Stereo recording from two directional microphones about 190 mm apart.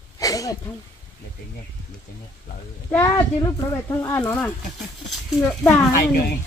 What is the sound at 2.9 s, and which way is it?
Speech, 15° left (ahead or behind).